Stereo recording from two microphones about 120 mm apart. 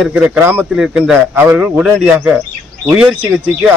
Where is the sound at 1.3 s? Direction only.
15° right (ahead or behind).